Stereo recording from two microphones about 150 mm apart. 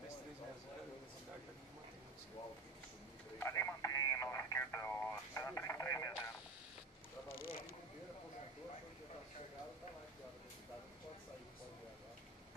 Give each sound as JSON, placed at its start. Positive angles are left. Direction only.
{"t": 3.3, "sound": "radio", "side_deg": 20}